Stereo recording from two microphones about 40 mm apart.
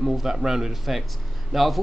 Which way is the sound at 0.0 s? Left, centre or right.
Centre.